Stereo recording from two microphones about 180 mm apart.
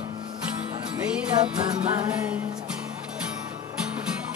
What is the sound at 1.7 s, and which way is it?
Music, 25° right (ahead or behind).